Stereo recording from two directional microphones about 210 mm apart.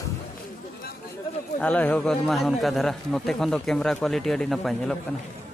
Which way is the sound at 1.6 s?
5° left (ahead or behind).